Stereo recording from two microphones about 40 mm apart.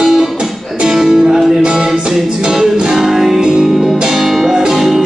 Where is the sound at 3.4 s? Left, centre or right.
Centre.